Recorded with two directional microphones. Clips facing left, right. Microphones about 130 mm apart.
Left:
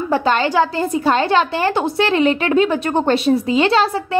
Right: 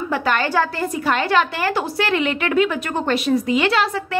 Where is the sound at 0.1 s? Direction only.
25° left (ahead or behind).